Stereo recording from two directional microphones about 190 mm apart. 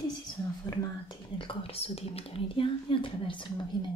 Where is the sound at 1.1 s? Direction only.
25° left (ahead or behind).